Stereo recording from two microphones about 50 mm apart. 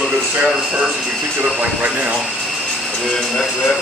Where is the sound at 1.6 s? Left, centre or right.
Right.